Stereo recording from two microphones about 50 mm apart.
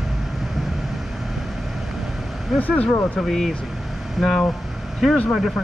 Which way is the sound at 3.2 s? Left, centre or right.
Centre.